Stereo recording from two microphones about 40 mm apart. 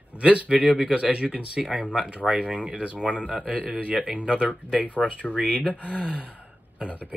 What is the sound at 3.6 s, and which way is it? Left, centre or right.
Speech, right.